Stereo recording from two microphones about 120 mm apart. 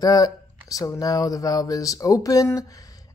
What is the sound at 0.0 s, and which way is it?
Speech, 30° left (ahead or behind).